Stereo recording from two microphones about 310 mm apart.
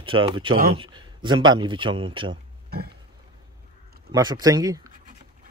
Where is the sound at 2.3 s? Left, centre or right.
Right.